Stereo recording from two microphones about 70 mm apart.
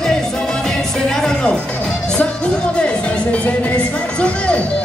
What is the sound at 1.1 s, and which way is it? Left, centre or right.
Music, centre.